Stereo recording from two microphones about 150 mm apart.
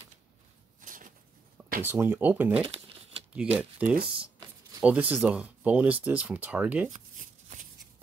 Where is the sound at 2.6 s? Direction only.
40° right (ahead or behind).